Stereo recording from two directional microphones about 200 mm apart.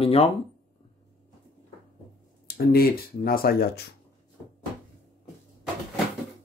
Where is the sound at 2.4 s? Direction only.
50° left (ahead or behind).